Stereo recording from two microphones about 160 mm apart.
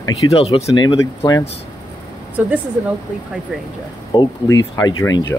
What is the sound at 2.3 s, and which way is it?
Speech, 10° right (ahead or behind).